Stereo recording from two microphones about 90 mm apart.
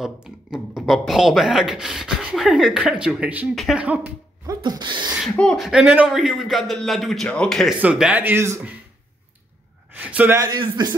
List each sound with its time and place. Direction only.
0.0 s speech: 5° right (ahead or behind)
4.5 s speech: 50° right (ahead or behind)
5.3 s speech: 10° left (ahead or behind)
5.6 s speech: 10° right (ahead or behind)
7.8 s speech: 15° right (ahead or behind)
9.9 s speech: 20° right (ahead or behind)
10.5 s a man's voice: 60° right (ahead or behind)